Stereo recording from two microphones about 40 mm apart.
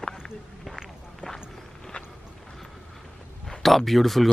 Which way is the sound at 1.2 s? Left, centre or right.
Left.